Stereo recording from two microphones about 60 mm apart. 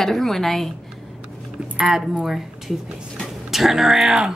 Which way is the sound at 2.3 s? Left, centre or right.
Centre.